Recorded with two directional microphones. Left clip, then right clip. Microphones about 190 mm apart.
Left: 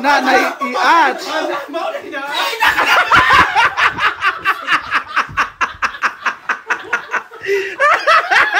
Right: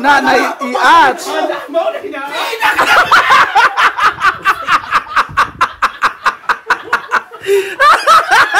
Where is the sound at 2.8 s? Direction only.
15° right (ahead or behind).